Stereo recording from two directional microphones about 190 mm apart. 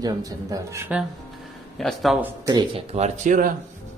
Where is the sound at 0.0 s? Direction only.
20° right (ahead or behind).